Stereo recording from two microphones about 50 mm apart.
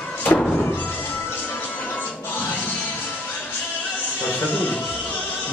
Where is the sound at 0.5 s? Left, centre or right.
Left.